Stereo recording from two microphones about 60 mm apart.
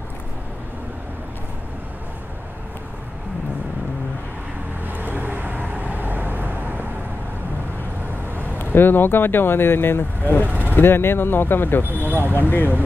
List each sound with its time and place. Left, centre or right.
4.8 s vehicle: right
8.7 s speech: left
12.1 s speech: right
12.4 s speech: left